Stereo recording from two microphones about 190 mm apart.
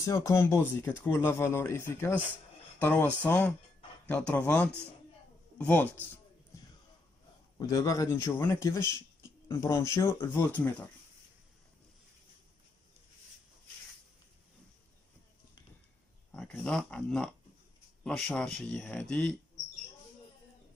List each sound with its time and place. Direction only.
0.0 s speech: 15° left (ahead or behind)
7.5 s speech: 15° left (ahead or behind)
8.8 s a sound: 20° right (ahead or behind)
9.5 s speech: 15° left (ahead or behind)
16.3 s speech: 5° left (ahead or behind)